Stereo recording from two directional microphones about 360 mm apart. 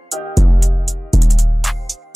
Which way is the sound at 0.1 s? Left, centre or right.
Centre.